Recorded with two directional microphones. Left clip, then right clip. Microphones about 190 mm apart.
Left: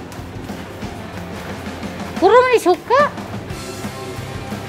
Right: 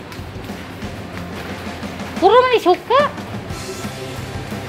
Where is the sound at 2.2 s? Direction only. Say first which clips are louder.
Even; 10° left (ahead or behind).